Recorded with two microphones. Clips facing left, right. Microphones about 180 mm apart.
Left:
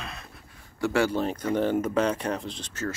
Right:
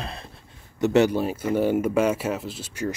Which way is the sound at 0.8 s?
20° right (ahead or behind).